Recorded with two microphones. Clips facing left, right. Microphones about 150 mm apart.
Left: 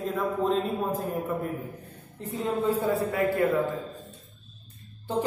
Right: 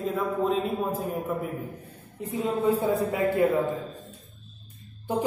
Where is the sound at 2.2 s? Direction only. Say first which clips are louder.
Right 2 dB; 10° right (ahead or behind).